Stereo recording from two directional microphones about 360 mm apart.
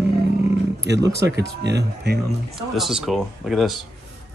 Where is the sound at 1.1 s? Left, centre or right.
Right.